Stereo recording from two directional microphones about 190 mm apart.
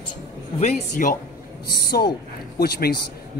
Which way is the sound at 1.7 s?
55° left (ahead or behind).